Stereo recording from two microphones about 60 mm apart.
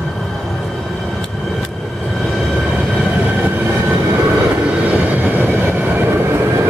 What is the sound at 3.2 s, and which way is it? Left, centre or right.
Train, right.